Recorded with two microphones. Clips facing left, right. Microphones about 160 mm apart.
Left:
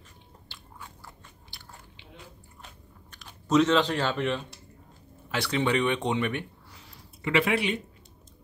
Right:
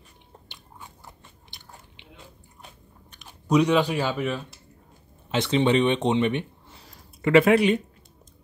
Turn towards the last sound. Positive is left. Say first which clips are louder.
# right 8 dB
turn(degrees=-45)  # may be behind; listen again after turning